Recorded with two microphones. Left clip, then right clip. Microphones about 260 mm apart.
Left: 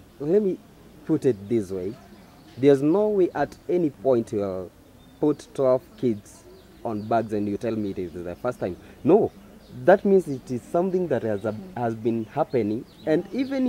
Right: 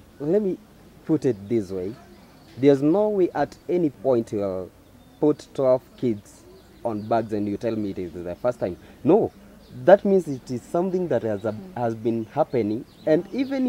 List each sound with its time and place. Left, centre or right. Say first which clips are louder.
0.2 s speech: left 1 dB; right